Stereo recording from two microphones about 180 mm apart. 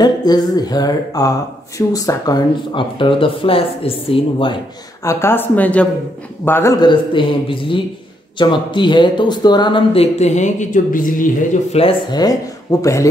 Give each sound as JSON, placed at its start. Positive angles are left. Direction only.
{"t": 0.0, "sound": "speech", "side_deg": 20}
{"t": 5.0, "sound": "speech", "side_deg": 15}
{"t": 11.7, "sound": "speech", "side_deg": 30}